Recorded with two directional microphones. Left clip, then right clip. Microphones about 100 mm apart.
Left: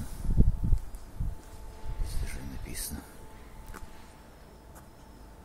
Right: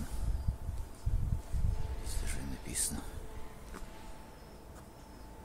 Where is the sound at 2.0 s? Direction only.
15° left (ahead or behind).